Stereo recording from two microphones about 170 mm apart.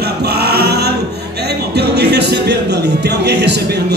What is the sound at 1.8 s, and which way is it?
Speech, 75° right (ahead or behind).